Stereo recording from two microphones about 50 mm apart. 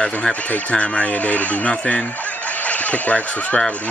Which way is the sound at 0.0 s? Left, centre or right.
Left.